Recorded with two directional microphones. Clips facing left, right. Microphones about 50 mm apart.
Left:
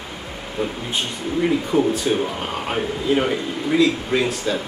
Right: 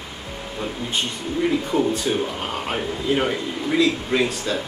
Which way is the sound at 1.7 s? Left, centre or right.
Centre.